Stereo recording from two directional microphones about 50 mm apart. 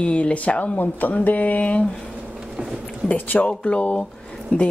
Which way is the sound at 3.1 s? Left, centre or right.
Left.